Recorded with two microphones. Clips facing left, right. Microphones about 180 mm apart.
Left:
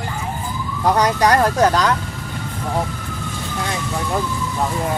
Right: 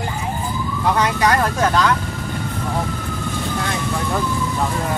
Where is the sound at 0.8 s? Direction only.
40° left (ahead or behind).